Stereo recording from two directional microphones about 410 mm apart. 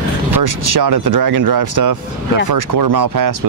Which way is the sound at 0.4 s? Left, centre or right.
Right.